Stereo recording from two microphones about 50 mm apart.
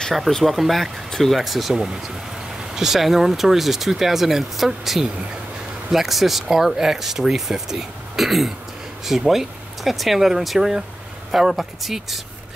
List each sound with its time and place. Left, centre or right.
0.3 s speech: centre